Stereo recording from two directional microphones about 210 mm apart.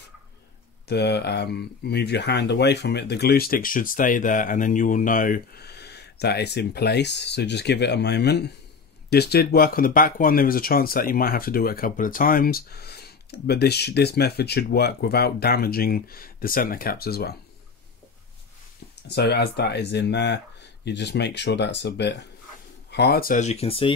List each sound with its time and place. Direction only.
0.8 s speech: 50° left (ahead or behind)
19.0 s speech: 50° left (ahead or behind); by 23.9 s 25° left (ahead or behind)